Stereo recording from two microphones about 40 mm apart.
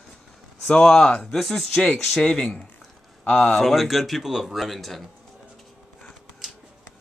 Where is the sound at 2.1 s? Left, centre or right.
Centre.